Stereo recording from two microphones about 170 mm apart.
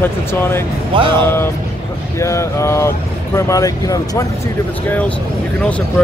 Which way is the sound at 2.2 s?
15° left (ahead or behind).